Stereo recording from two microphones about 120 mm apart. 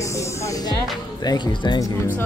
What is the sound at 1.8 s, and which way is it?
Speech, 30° left (ahead or behind).